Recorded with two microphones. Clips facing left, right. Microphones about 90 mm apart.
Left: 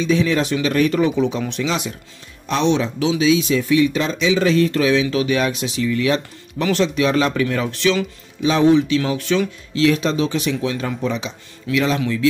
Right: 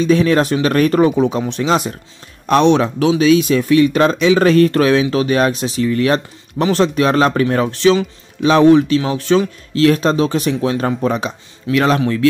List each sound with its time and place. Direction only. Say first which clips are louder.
0.0 s speech: right 5 dB; 50° right (ahead or behind)
2.4 s speech: right 6 dB; 55° right (ahead or behind); by 8.0 s 35° right (ahead or behind)
8.4 s speech: right 5 dB; 60° right (ahead or behind)
9.0 s speech: right 4 dB; 35° right (ahead or behind); by 12.0 s 55° right (ahead or behind)